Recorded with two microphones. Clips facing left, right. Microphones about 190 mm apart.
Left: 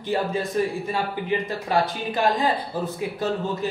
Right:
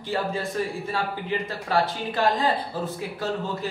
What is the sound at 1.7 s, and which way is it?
Speech, 15° left (ahead or behind).